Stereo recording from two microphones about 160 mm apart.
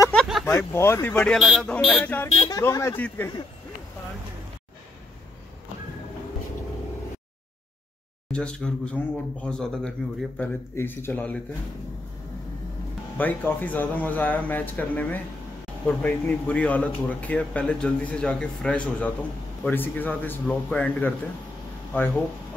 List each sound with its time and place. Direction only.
0.1 s a sound: centre (ahead or behind)
0.5 s speech: 15° left (ahead or behind)
8.3 s speech: 5° left (ahead or behind)
13.2 s speech: 10° left (ahead or behind)